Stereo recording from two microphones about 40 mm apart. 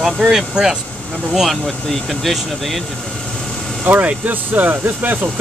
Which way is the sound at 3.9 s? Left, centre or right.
Right.